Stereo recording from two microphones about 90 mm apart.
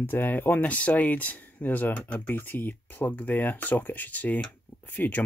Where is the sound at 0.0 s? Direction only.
20° left (ahead or behind).